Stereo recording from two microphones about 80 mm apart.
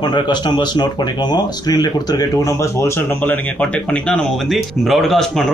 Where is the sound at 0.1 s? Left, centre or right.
Left.